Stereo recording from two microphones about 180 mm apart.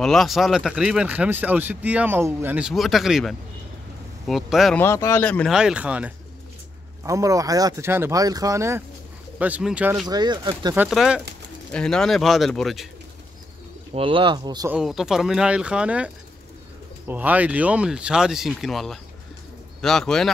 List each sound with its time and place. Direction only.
0.0 s speech: centre (ahead or behind)
4.7 s speech: 15° left (ahead or behind)
5.5 s speech: 5° right (ahead or behind)
7.1 s speech: 20° right (ahead or behind)
10.0 s speech: 25° right (ahead or behind)
10.9 s speech: centre (ahead or behind)
13.9 s speech: 30° right (ahead or behind)
14.7 s speech: centre (ahead or behind)
17.1 s speech: 10° right (ahead or behind)